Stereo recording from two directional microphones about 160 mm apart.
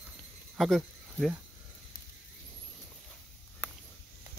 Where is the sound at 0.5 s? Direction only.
Centre (ahead or behind).